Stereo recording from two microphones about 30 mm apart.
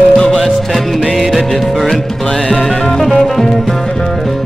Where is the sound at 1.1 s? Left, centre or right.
Centre.